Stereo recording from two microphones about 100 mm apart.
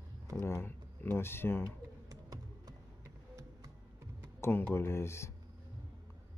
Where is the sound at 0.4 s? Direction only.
25° left (ahead or behind).